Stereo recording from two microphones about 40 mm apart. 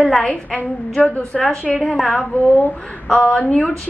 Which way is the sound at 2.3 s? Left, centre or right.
Left.